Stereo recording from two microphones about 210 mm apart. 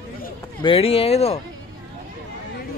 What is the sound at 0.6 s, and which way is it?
Speech, 25° left (ahead or behind).